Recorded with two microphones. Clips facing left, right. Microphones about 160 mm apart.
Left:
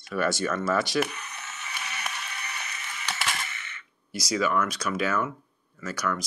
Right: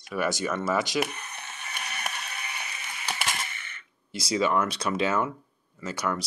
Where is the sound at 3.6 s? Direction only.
30° right (ahead or behind).